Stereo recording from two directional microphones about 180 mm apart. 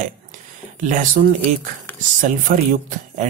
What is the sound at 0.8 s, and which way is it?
Speech, 45° right (ahead or behind).